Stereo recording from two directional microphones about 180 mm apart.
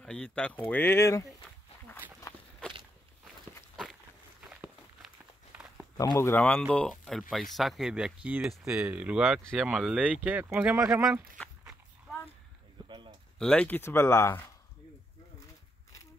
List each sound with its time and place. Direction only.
0.0 s speech: 5° left (ahead or behind)
4.5 s walk: 5° right (ahead or behind)
5.9 s speech: 15° left (ahead or behind); by 11.1 s 5° right (ahead or behind)
11.3 s dog: 5° left (ahead or behind)
12.8 s a sound: 25° right (ahead or behind)
13.4 s speech: 5° left (ahead or behind)